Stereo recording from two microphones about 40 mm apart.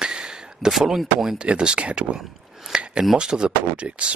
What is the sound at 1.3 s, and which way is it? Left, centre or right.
Speech, right.